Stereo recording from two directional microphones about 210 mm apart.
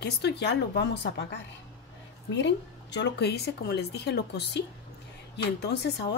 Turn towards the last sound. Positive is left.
turn(degrees=55)  # may be behind; listen again after turning